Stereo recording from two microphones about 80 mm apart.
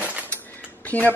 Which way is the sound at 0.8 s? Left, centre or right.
Centre.